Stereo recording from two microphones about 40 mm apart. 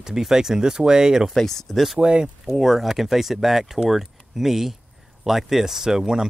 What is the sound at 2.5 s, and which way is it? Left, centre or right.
Speech, centre.